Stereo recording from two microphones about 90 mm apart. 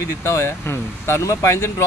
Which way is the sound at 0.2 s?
30° left (ahead or behind).